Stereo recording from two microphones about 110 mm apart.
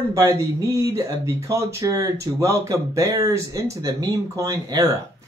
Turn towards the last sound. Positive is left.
turn(degrees=-30)  # may be behind; listen again after turning